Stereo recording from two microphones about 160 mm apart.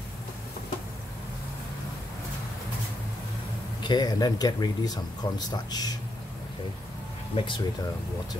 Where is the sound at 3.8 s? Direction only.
25° left (ahead or behind).